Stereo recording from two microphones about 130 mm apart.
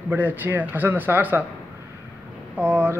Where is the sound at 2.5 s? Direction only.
15° right (ahead or behind).